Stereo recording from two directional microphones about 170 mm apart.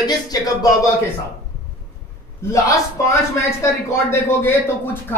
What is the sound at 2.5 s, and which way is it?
Speech, 20° left (ahead or behind).